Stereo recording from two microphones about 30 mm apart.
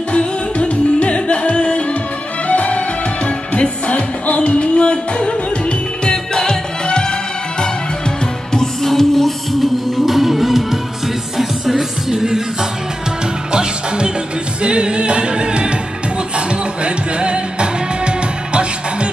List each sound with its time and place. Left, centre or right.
0.1 s music: left
2.4 s music: left
8.8 s music: centre
13.5 s music: right